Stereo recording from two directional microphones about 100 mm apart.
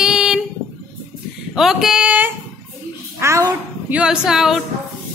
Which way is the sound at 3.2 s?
25° right (ahead or behind).